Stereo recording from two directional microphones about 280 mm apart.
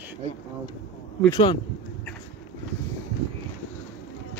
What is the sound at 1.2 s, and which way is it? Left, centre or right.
Speech, centre.